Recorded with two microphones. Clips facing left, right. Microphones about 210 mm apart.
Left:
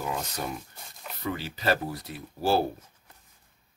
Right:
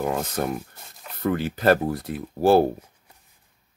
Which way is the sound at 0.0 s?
50° right (ahead or behind).